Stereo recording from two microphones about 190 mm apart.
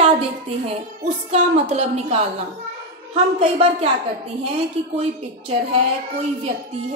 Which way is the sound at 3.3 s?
35° right (ahead or behind).